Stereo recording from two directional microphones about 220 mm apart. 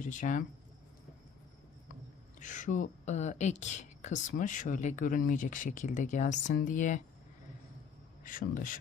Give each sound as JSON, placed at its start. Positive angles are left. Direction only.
{"t": 0.0, "sound": "speech", "side_deg": 35}
{"t": 2.4, "sound": "speech", "side_deg": 35}
{"t": 8.2, "sound": "speech", "side_deg": 40}